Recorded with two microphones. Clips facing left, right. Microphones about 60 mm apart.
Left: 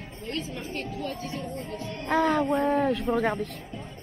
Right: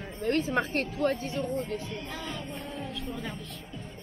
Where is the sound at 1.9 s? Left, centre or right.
Left.